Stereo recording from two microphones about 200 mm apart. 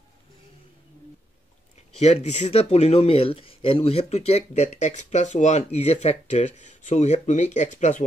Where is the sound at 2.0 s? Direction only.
30° left (ahead or behind).